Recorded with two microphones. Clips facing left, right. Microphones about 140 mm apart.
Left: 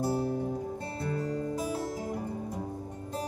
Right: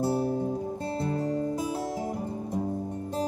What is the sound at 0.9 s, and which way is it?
Music, 30° right (ahead or behind).